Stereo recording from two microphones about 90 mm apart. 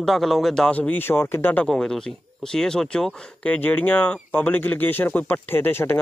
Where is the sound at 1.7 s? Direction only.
5° left (ahead or behind).